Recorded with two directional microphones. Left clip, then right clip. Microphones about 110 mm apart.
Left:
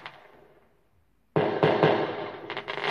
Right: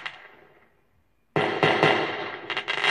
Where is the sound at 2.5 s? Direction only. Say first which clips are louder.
Right 7 dB; 40° right (ahead or behind).